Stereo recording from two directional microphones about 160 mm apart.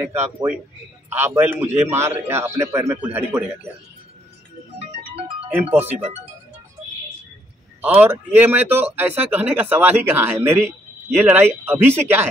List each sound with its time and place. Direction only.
0.0 s speech: 15° right (ahead or behind)
5.5 s speech: 10° right (ahead or behind)
7.8 s speech: 10° right (ahead or behind)